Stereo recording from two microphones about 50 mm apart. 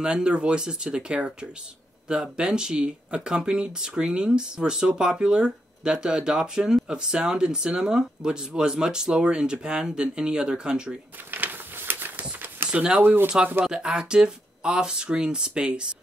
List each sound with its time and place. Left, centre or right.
0.0 s speech: centre
11.2 s a sound: right
12.6 s speech: right
13.0 s speech: right
13.7 s speech: centre